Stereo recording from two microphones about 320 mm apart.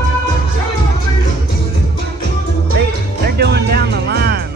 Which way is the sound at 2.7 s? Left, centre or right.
Right.